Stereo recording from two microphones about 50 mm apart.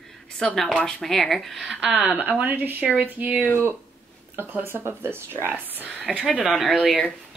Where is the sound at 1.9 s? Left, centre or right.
Right.